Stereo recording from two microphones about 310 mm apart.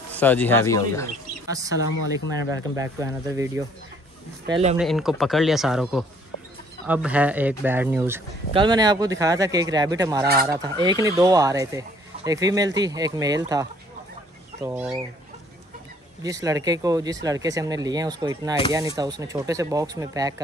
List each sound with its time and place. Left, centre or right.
0.2 s speech: centre
1.5 s speech: centre
2.8 s speech: centre
4.7 s speech: centre
16.2 s speech: centre